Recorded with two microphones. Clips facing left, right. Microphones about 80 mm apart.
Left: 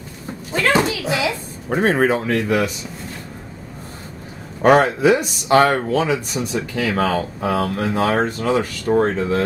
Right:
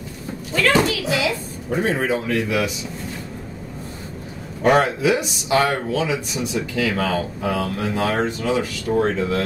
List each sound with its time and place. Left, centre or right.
0.5 s a sound: left
1.7 s speech: left
4.6 s speech: left